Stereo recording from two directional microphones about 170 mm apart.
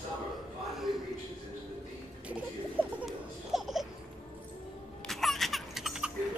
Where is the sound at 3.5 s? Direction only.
Centre (ahead or behind).